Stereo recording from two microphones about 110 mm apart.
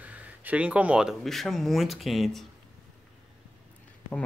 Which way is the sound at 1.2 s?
Centre (ahead or behind).